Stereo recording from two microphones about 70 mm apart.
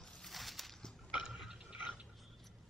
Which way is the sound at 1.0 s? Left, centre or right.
Centre.